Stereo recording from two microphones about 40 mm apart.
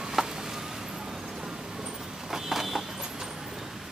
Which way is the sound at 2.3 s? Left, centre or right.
Centre.